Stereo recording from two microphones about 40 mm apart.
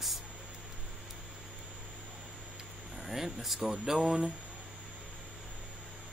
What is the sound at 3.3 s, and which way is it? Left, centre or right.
Speech, centre.